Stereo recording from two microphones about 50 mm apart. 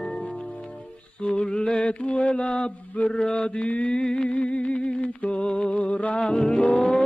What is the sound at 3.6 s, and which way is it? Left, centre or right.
Mantra, left.